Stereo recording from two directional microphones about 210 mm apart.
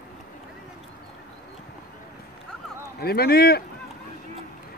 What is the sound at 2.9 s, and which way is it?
Speech, 50° left (ahead or behind).